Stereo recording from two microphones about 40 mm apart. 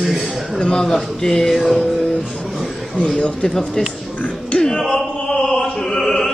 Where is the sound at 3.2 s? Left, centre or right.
Left.